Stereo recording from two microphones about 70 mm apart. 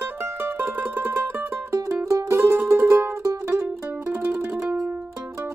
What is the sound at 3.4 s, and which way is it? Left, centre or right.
Music, centre.